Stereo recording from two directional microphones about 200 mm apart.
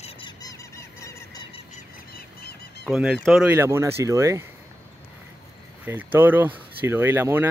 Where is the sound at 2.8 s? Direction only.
Centre (ahead or behind).